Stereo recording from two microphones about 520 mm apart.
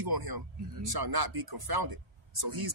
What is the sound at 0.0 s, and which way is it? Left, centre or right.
Speech, right.